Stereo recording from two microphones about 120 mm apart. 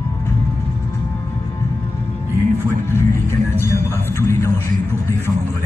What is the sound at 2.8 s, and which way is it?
Music, 20° left (ahead or behind).